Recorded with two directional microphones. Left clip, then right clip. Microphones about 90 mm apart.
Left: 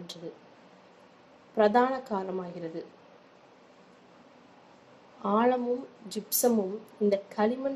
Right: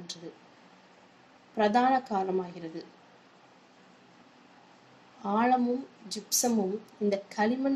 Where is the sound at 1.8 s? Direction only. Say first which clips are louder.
Right 2 dB; 15° right (ahead or behind).